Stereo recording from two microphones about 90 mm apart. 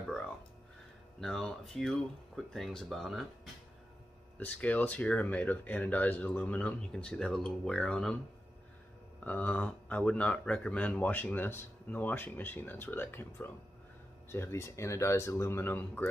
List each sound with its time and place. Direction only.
1.2 s speech: 5° left (ahead or behind)
4.4 s speech: 15° left (ahead or behind)
9.2 s speech: 20° left (ahead or behind)